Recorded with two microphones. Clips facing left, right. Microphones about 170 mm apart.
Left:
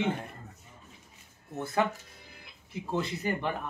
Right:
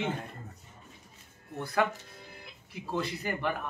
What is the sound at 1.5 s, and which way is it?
Speech, 25° left (ahead or behind).